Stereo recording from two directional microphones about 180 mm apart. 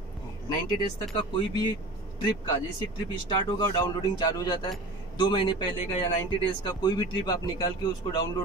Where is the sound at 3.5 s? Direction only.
25° left (ahead or behind).